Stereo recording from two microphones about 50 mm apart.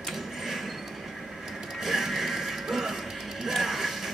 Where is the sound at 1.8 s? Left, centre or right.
Centre.